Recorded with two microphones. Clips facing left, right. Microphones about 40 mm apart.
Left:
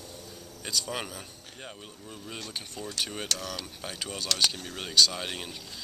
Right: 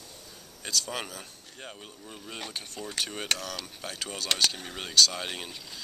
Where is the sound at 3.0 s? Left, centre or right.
Centre.